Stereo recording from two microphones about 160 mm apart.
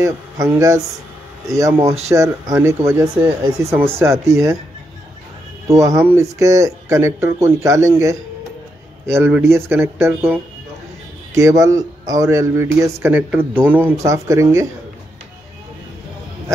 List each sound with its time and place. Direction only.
0.0 s speech: 20° right (ahead or behind)
5.7 s speech: 20° right (ahead or behind)